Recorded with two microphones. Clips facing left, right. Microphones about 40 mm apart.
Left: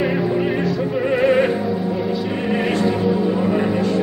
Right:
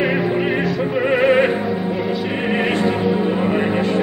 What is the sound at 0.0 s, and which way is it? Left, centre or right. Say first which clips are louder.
Music: right 1 dB; right.